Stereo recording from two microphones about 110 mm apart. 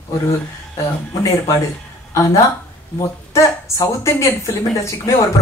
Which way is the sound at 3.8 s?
30° left (ahead or behind).